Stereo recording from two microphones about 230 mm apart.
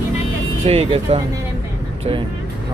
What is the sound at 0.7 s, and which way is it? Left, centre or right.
Speech, right.